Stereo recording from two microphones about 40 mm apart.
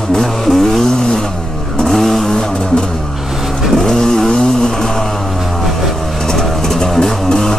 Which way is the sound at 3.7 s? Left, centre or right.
Centre.